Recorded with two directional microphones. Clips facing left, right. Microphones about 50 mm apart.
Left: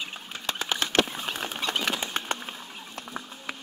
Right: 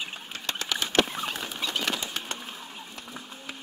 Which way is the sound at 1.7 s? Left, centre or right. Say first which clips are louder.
Left 2 dB; left.